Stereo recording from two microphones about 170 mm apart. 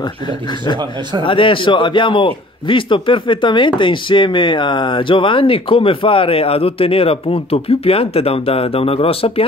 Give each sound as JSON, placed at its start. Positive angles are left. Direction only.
{"t": 1.2, "sound": "a man's voice", "side_deg": 30}